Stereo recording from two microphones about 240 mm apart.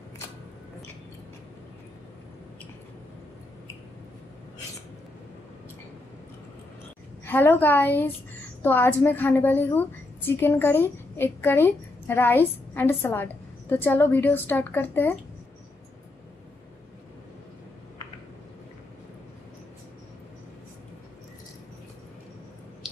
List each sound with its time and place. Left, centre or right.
7.2 s a woman's voice: centre